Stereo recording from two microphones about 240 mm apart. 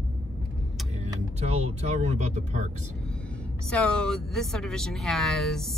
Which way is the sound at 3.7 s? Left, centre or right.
Centre.